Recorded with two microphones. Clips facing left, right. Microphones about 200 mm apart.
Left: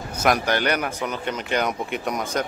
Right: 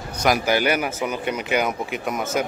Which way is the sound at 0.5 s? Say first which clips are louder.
Right 2 dB; 10° right (ahead or behind).